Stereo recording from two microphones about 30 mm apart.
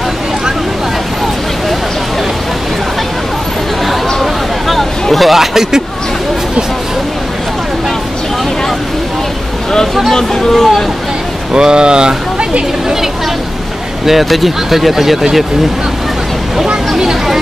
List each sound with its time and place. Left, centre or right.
3.8 s a sound: centre
5.1 s speech: centre
10.1 s speech: centre
11.5 s speech: right
14.0 s speech: centre
16.9 s chatter: centre